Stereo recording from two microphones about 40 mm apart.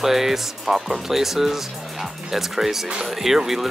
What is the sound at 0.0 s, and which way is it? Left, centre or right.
Speech, centre.